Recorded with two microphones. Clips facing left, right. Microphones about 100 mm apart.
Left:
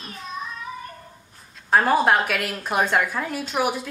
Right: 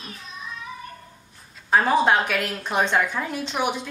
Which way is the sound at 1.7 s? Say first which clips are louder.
Left 1 dB; centre (ahead or behind).